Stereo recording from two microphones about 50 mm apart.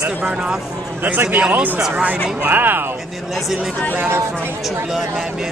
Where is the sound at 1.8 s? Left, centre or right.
Centre.